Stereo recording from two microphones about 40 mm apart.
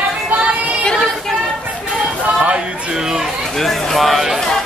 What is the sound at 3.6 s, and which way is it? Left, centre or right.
Speech, centre.